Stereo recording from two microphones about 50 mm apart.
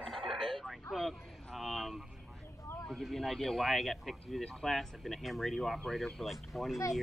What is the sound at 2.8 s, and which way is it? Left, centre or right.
Speech, centre.